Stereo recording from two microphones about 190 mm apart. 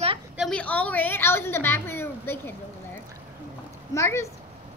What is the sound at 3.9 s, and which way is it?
Speech, 15° left (ahead or behind).